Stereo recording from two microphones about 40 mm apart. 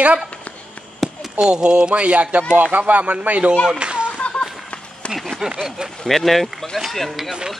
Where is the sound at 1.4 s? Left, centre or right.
Right.